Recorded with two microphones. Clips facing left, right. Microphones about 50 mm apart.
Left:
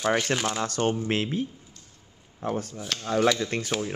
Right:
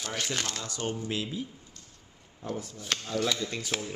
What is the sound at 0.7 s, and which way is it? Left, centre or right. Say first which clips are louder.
Speech: left 7 dB; left.